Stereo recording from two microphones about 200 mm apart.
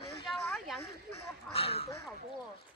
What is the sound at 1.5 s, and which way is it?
Speech, 30° left (ahead or behind).